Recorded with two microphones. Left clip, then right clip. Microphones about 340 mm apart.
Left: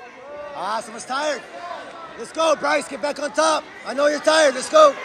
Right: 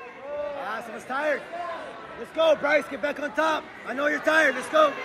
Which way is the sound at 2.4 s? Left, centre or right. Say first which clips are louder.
Left 2 dB; centre.